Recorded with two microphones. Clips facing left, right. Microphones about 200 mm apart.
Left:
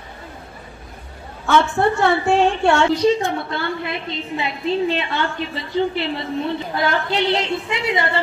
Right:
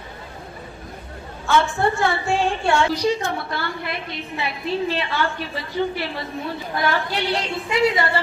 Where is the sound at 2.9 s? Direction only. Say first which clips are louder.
Left 5 dB; 20° left (ahead or behind).